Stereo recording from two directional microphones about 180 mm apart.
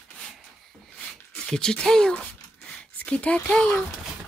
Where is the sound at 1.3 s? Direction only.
5° left (ahead or behind).